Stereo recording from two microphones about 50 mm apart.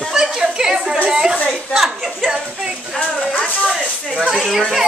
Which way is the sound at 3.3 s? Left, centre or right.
Left.